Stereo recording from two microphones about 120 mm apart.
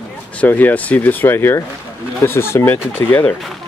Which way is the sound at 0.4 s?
15° left (ahead or behind).